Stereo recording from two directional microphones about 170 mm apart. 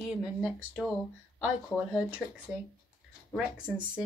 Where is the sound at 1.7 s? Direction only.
15° left (ahead or behind).